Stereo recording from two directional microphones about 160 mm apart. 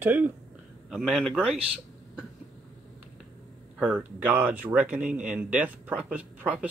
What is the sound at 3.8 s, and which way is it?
Speech, 10° right (ahead or behind).